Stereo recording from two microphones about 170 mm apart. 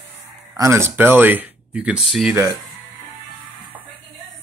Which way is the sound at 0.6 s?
15° right (ahead or behind).